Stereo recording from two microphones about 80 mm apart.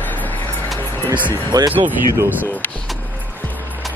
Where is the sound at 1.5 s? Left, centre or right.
Right.